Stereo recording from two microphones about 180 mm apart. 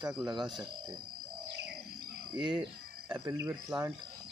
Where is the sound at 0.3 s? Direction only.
25° right (ahead or behind).